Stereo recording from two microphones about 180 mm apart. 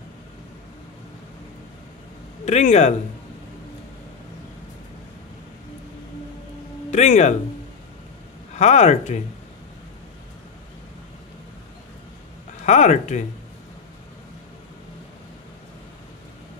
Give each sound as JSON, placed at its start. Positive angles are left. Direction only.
{"t": 2.4, "sound": "speech", "side_deg": 40}
{"t": 6.9, "sound": "speech", "side_deg": 40}
{"t": 8.5, "sound": "speech", "side_deg": 40}
{"t": 12.6, "sound": "speech", "side_deg": 40}